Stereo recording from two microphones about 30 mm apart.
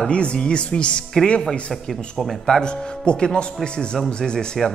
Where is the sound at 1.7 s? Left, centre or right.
Centre.